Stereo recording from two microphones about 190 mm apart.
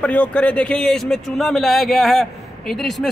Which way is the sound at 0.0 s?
5° left (ahead or behind).